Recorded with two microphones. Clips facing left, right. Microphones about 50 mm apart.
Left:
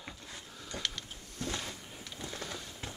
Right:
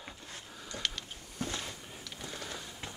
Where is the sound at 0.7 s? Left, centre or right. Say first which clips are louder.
Right 1 dB; centre.